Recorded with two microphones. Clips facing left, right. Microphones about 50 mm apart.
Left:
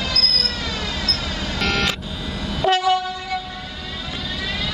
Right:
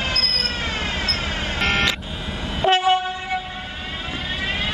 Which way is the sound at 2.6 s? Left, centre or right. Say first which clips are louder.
Right 1 dB; right.